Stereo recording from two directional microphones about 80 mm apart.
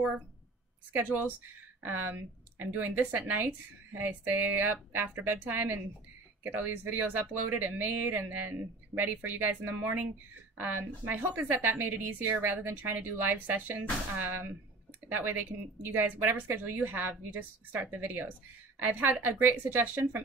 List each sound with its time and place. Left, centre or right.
0.9 s speech: right